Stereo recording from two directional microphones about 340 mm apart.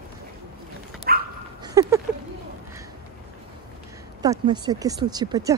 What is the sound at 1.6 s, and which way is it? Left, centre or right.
Speech, centre.